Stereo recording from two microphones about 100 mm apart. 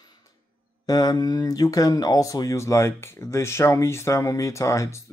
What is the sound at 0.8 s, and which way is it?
Speech, 40° left (ahead or behind).